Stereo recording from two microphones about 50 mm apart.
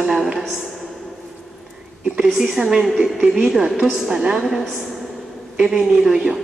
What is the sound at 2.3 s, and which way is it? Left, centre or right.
A woman's voice, centre.